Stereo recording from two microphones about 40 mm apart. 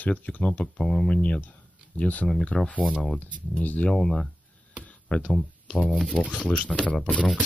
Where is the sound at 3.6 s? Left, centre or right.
Left.